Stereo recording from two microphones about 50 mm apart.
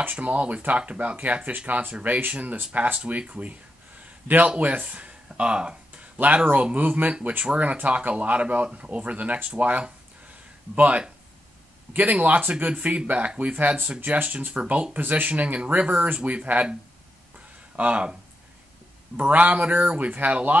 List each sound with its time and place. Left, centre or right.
0.0 s speech: right
4.0 s a sound: right
4.5 s speech: right
15.0 s speech: right
16.2 s speech: centre
17.7 s speech: right
19.1 s speech: right